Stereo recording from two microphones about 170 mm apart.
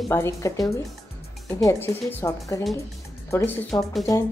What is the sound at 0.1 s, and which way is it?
A woman's voice, 15° left (ahead or behind).